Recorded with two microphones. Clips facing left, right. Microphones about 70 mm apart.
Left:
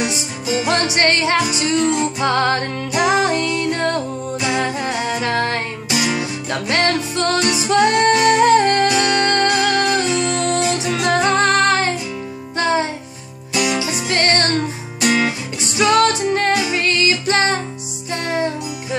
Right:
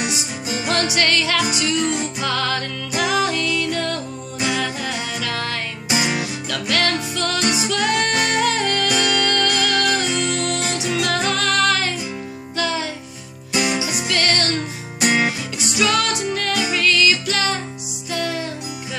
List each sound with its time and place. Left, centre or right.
0.7 s music: left
5.9 s music: right
6.5 s music: left
13.5 s music: right
14.0 s music: left
15.0 s music: right
15.6 s music: left